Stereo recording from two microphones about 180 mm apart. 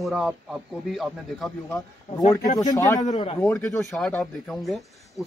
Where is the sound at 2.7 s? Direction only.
20° left (ahead or behind).